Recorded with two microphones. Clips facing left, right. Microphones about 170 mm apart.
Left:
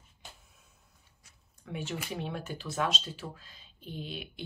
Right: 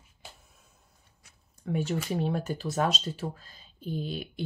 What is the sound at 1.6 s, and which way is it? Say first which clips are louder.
Speech: right 7 dB; 40° right (ahead or behind).